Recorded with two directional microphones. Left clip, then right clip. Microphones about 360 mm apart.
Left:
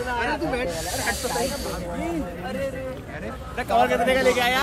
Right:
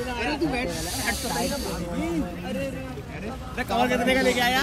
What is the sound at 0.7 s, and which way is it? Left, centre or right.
Speech, left.